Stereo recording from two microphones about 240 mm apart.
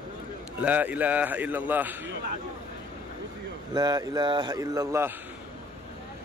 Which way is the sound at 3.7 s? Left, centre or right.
Centre.